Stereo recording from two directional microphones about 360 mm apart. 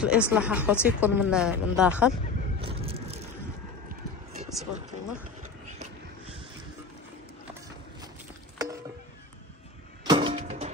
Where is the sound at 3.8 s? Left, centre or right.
Centre.